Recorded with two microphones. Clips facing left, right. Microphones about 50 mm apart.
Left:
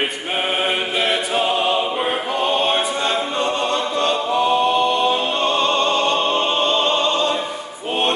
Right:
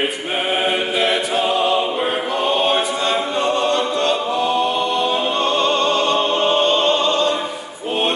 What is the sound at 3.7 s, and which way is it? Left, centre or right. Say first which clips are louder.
Choir: right 1 dB; centre.